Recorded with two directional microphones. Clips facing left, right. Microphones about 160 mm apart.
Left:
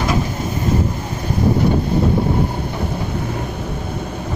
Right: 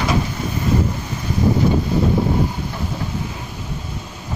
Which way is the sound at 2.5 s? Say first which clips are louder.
Left 3 dB; 55° left (ahead or behind).